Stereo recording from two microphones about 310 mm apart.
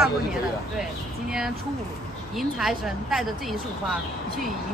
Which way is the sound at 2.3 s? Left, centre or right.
Centre.